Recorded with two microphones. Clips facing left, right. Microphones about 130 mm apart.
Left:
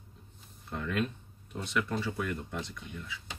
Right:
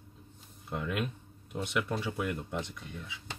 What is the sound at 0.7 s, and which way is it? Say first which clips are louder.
Speech: left 1 dB; 15° right (ahead or behind).